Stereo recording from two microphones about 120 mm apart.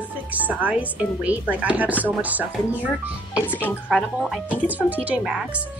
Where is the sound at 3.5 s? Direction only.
15° left (ahead or behind).